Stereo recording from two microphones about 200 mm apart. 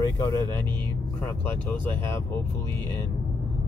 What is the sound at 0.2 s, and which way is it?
Speech, 15° left (ahead or behind).